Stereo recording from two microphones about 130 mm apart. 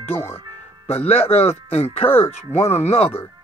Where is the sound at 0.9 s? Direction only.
50° left (ahead or behind).